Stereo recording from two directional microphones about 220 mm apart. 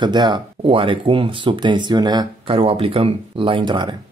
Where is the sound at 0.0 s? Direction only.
20° right (ahead or behind).